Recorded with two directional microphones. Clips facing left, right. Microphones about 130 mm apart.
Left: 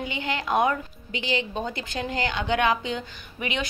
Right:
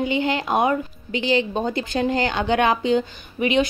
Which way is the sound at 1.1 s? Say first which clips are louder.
Right 7 dB; 35° right (ahead or behind).